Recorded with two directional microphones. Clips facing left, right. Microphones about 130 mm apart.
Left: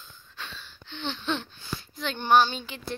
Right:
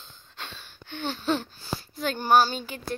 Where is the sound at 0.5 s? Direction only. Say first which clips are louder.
Right 3 dB; 50° right (ahead or behind).